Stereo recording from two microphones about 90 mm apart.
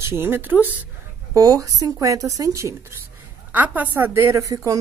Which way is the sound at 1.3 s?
40° right (ahead or behind).